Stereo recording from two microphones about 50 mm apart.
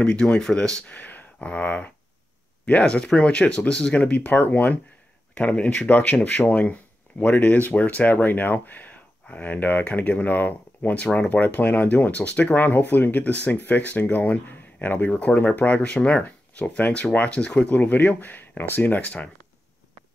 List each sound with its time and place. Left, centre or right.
0.0 s speech: left
0.9 s speech: left
5.9 s speech: left
17.7 s speech: left